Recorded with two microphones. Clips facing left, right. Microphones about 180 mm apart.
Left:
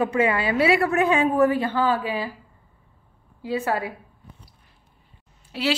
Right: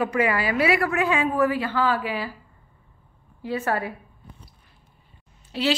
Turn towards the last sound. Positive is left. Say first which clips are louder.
# right 1 dB
turn(degrees=10)  # may be behind; listen again after turning